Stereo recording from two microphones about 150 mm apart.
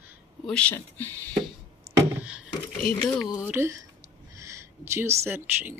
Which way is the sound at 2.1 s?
10° right (ahead or behind).